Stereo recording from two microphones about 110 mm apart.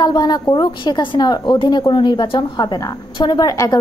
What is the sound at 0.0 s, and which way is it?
A woman's voice, 40° left (ahead or behind).